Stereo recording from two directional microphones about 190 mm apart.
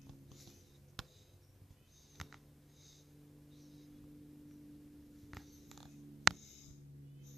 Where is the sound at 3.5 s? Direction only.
Centre (ahead or behind).